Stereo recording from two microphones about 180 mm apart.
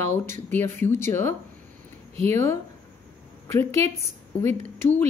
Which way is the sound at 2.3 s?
15° left (ahead or behind).